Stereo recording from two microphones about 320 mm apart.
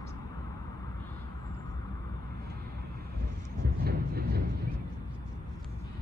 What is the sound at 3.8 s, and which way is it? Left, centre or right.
Vehicle, right.